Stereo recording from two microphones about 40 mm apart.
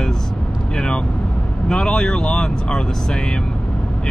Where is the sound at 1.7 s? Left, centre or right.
Centre.